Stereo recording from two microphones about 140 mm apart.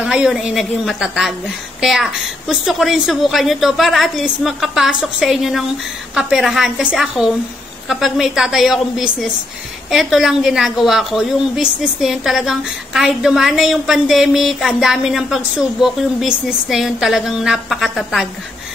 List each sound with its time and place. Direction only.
0.0 s a woman's voice: 5° right (ahead or behind)